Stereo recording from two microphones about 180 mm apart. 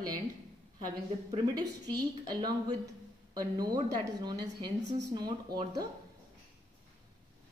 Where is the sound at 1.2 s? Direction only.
20° right (ahead or behind).